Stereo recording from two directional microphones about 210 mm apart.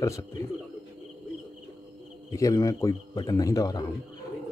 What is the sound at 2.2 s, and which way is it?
Speech, 15° left (ahead or behind).